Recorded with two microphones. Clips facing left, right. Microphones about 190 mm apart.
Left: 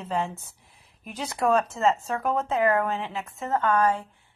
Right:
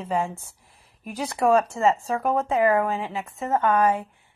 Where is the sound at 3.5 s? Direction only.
20° right (ahead or behind).